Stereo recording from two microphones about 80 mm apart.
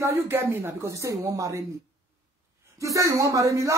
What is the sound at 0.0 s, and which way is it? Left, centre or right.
Speech, right.